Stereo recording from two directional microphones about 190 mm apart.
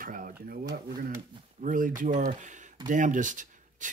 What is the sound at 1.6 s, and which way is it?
Speech, 45° right (ahead or behind).